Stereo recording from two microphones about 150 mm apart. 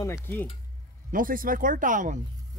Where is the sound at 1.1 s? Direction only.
70° right (ahead or behind).